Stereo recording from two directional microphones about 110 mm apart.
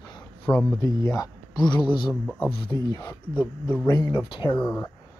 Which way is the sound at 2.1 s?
15° left (ahead or behind).